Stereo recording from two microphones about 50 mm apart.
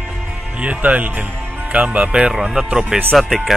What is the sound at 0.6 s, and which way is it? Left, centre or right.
Speech, right.